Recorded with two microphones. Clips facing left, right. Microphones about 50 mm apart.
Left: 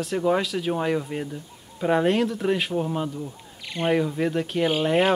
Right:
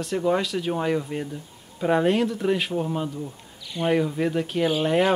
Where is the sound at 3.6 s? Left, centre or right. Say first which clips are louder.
Even; left.